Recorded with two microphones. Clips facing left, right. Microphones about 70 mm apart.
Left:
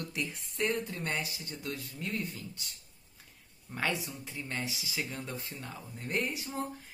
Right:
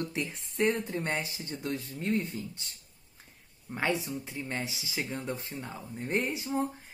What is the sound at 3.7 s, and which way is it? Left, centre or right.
Speech, right.